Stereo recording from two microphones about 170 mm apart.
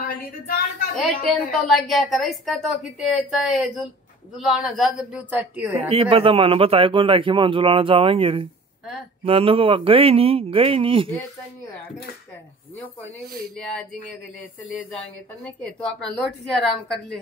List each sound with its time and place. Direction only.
0.1 s a sound: 60° left (ahead or behind)
1.0 s a woman's voice: centre (ahead or behind)
5.9 s a man's voice: 35° right (ahead or behind)
15.4 s a woman's voice: 5° left (ahead or behind)